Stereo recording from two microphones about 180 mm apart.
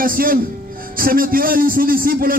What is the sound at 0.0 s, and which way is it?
A man's voice, 55° right (ahead or behind).